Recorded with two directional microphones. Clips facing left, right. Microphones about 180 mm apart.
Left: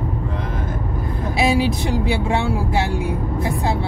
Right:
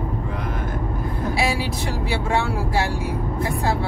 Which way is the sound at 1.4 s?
20° left (ahead or behind).